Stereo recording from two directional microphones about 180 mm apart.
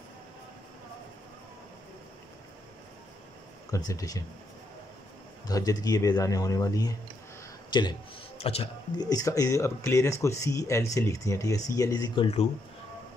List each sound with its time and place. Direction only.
3.7 s speech: 20° left (ahead or behind)
5.5 s a man's voice: 20° left (ahead or behind)
8.9 s speech: 20° left (ahead or behind)